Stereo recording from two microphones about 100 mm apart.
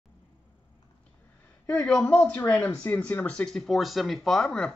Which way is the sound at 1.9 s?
10° left (ahead or behind).